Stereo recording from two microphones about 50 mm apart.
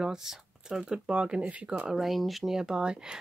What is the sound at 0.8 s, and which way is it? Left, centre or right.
Speech, centre.